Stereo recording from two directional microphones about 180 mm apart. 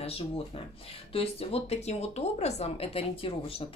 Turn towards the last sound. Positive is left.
turn(degrees=30)  # may be behind; listen again after turning